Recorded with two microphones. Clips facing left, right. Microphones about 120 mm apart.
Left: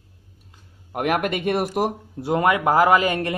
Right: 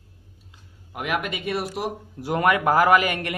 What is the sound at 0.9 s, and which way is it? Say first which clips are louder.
Speech: left 5 dB; 50° left (ahead or behind).